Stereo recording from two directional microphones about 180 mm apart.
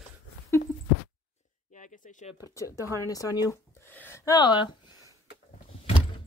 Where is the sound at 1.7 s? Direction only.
45° left (ahead or behind).